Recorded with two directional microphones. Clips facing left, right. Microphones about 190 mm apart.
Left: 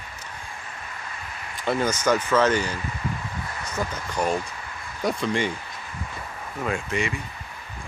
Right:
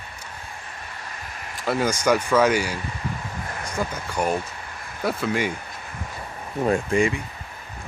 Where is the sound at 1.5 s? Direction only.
5° right (ahead or behind).